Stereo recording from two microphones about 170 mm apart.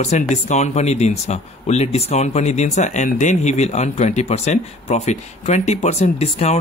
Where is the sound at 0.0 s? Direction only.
45° left (ahead or behind).